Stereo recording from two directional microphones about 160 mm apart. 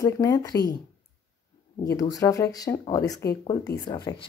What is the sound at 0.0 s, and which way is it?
Speech, 20° left (ahead or behind).